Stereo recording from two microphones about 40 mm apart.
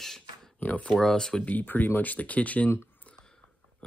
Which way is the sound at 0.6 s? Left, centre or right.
Left.